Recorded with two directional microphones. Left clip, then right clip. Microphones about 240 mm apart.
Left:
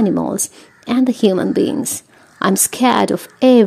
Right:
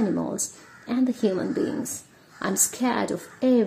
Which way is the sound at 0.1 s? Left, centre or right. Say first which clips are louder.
Left 9 dB; left.